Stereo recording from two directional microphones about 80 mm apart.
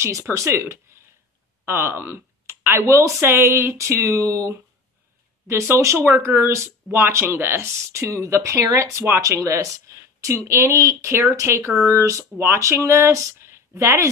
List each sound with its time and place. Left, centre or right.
0.0 s speech: right
9.9 s a sound: right
10.2 s speech: right